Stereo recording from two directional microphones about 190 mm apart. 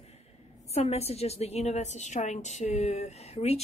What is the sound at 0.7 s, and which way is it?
Speech, 35° left (ahead or behind).